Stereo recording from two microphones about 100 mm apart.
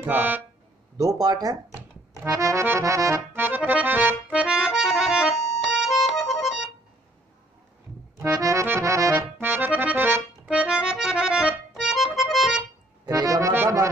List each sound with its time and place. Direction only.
0.0 s a sound: 20° right (ahead or behind)
0.9 s speech: 40° right (ahead or behind)
2.2 s accordion: 30° right (ahead or behind); by 6.7 s 5° right (ahead or behind)
8.4 s accordion: 30° right (ahead or behind)
9.1 s accordion: 20° right (ahead or behind); by 12.6 s centre (ahead or behind)
13.0 s accordion: 35° right (ahead or behind)